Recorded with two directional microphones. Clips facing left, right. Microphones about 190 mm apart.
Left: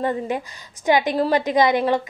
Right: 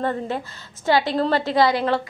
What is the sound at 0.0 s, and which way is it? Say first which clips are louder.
A woman's voice: left 1 dB; 15° left (ahead or behind).